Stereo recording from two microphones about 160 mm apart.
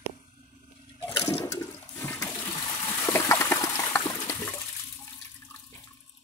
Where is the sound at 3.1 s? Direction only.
15° left (ahead or behind).